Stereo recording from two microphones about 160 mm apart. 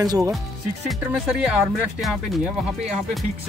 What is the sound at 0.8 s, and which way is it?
Speech, 5° right (ahead or behind).